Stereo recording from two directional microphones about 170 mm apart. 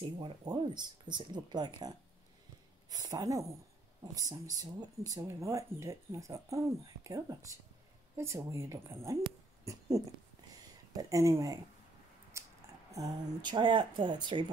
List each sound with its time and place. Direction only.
0.0 s speech: 25° right (ahead or behind)
9.2 s owl: 20° right (ahead or behind)
10.9 s speech: 20° right (ahead or behind)
12.4 s a sound: 15° right (ahead or behind)
12.9 s speech: 25° right (ahead or behind)